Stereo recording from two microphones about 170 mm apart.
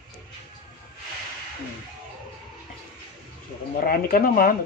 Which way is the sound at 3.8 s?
55° left (ahead or behind).